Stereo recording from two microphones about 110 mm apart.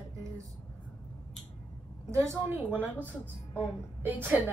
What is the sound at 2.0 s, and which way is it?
A woman's voice, 25° right (ahead or behind).